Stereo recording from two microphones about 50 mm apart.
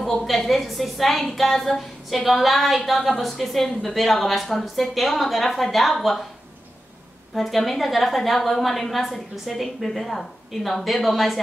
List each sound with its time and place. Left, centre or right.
0.0 s a woman's voice: centre
7.3 s a woman's voice: centre